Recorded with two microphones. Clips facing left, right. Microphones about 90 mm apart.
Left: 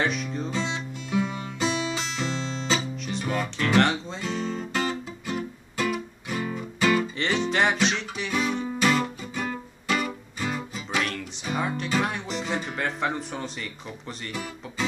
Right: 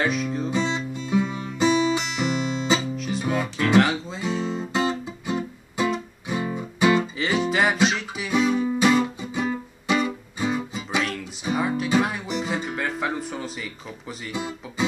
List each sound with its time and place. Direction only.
0.0 s music: 5° right (ahead or behind)
0.5 s music: 15° right (ahead or behind)
3.0 s guitar: 5° right (ahead or behind)
6.2 s music: 20° right (ahead or behind)
7.2 s music: 5° right (ahead or behind)
14.3 s music: 20° right (ahead or behind)